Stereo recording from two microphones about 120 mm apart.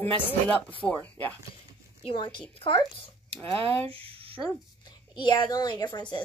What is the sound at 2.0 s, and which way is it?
Speech, 40° left (ahead or behind).